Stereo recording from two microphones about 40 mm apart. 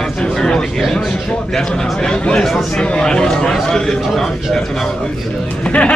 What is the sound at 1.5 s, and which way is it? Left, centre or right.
A man's voice, centre.